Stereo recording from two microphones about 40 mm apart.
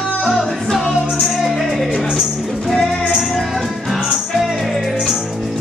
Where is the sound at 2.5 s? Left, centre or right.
Centre.